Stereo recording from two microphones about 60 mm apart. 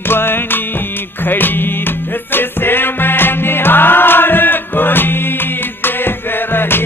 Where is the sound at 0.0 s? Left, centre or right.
Left.